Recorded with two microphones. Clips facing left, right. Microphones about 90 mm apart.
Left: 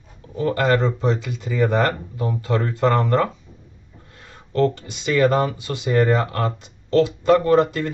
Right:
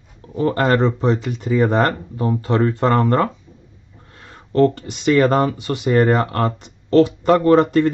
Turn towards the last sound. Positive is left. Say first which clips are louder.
# right 4 dB
turn(degrees=-45)  # may be behind; listen again after turning